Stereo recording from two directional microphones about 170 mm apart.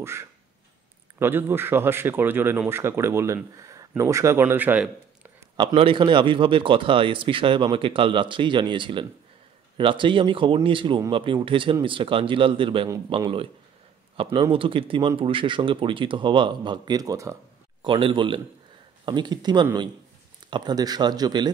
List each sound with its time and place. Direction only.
0.0 s speech: 15° right (ahead or behind)
5.6 s speech: 30° right (ahead or behind)
14.1 s speech: 30° right (ahead or behind)